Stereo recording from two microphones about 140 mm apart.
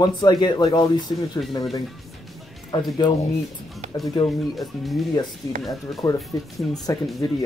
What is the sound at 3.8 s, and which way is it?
Music, 60° right (ahead or behind).